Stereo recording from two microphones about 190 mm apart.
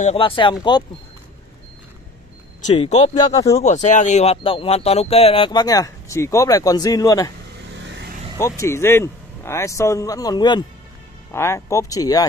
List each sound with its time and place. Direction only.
0.0 s speech: 30° left (ahead or behind)
2.6 s speech: 35° left (ahead or behind); by 7.3 s 20° left (ahead or behind)
8.4 s speech: 15° left (ahead or behind)